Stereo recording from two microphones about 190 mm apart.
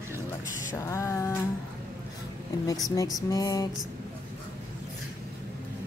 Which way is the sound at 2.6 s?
20° left (ahead or behind).